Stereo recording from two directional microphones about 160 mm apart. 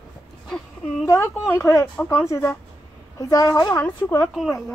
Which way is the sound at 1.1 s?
15° left (ahead or behind).